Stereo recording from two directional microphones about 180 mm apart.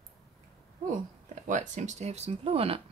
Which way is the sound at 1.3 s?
45° right (ahead or behind).